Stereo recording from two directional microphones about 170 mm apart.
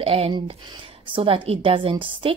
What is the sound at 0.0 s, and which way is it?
Speech, 35° right (ahead or behind).